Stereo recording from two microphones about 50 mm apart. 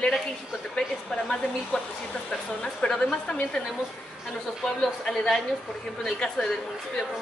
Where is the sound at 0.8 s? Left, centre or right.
Centre.